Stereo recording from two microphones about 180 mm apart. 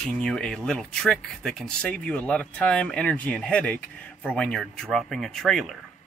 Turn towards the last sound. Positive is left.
turn(degrees=0)  # may be behind; listen again after turning